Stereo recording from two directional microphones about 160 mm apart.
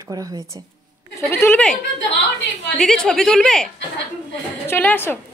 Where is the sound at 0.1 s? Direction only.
20° right (ahead or behind).